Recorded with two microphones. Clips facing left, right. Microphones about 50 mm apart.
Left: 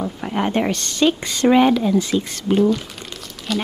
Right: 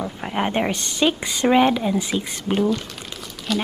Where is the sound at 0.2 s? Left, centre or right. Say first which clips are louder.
Left 2 dB; right.